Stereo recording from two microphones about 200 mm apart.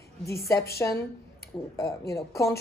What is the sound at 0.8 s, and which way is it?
Speech, 10° left (ahead or behind).